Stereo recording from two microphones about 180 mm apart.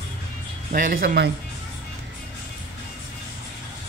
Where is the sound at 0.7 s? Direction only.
50° right (ahead or behind).